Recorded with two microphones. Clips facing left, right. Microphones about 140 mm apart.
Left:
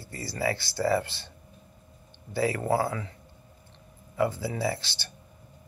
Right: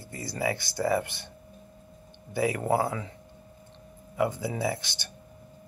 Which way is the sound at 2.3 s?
15° right (ahead or behind).